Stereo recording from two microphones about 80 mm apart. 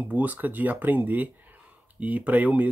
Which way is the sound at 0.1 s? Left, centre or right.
Right.